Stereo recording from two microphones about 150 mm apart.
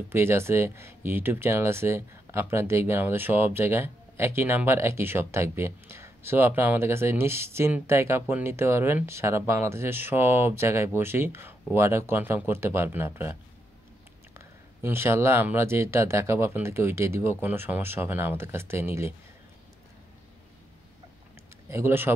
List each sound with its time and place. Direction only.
0.1 s speech: 15° right (ahead or behind)
21.6 s speech: 15° right (ahead or behind)